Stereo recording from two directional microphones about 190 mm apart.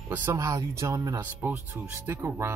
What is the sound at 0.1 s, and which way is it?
Speech, 10° right (ahead or behind).